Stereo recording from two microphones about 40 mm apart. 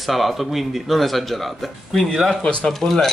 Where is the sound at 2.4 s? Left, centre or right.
Left.